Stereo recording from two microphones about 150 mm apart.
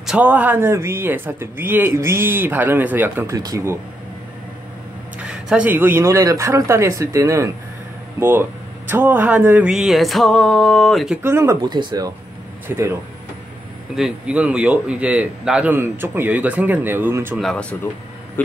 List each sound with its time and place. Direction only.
0.0 s speech: 10° right (ahead or behind)
5.2 s speech: 5° right (ahead or behind)
11.2 s speech: 15° right (ahead or behind)
11.6 s speech: 30° right (ahead or behind)
12.6 s speech: 15° right (ahead or behind)
13.9 s speech: 5° right (ahead or behind)
17.4 s speech: 5° left (ahead or behind)